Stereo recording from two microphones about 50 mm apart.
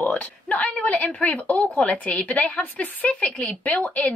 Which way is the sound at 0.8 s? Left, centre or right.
Left.